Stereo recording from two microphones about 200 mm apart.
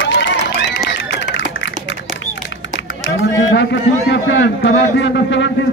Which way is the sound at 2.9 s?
70° left (ahead or behind).